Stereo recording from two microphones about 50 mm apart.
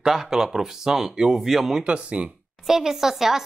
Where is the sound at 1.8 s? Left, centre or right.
Right.